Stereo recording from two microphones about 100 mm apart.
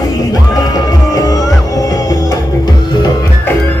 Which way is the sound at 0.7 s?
40° left (ahead or behind).